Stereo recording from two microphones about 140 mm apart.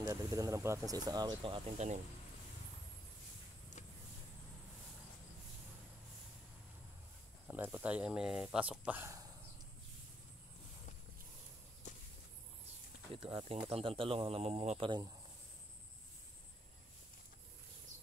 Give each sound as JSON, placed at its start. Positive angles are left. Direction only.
{"t": 0.0, "sound": "speech", "side_deg": -25}
{"t": 1.8, "sound": "speech", "side_deg": -55}
{"t": 7.4, "sound": "speech", "side_deg": -15}
{"t": 11.8, "sound": "a sound", "side_deg": 60}
{"t": 13.1, "sound": "speech", "side_deg": -40}